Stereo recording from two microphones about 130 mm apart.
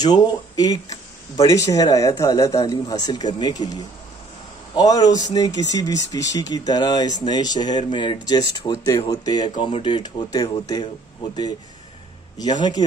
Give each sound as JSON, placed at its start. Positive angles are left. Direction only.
{"t": 0.0, "sound": "speech", "side_deg": 30}
{"t": 12.4, "sound": "speech", "side_deg": 30}